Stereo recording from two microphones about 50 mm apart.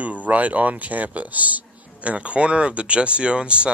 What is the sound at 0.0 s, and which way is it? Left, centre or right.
Speech, right.